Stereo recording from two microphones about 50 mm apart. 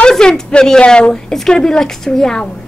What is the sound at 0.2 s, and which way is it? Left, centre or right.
A woman's voice, centre.